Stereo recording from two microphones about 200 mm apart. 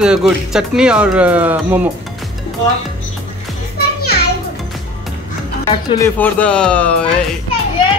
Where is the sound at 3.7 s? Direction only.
50° left (ahead or behind).